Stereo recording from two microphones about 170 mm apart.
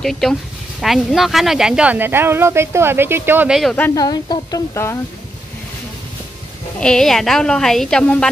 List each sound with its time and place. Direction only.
0.0 s speech: centre (ahead or behind)
3.7 s a woman's voice: 10° left (ahead or behind)
4.0 s speech: 25° left (ahead or behind)
6.8 s speech: 5° left (ahead or behind)